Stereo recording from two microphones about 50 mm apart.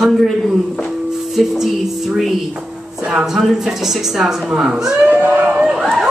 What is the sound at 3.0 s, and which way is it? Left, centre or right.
A woman's voice, centre.